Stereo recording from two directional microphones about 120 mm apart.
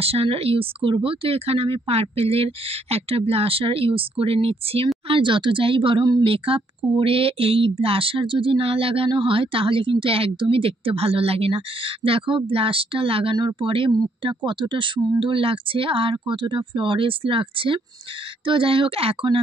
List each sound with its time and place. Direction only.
0.0 s speech: 55° right (ahead or behind); by 6.2 s 35° right (ahead or behind)
6.2 s speech: 50° right (ahead or behind)